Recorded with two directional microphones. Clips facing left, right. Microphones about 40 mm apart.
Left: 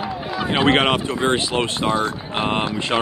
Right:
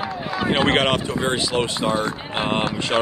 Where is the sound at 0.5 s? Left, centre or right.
Centre.